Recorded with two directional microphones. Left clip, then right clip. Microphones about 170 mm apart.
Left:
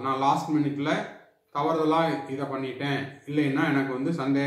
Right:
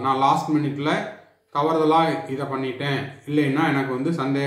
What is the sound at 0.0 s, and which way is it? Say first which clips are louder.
A man's voice: right 5 dB; 25° right (ahead or behind).